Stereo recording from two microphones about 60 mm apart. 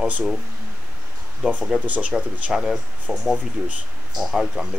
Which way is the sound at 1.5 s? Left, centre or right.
Right.